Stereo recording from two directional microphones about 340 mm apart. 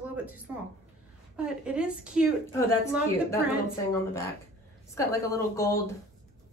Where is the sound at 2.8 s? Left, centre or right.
Centre.